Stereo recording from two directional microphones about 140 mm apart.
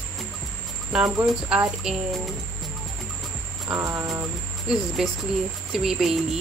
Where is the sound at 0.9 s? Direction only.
5° right (ahead or behind).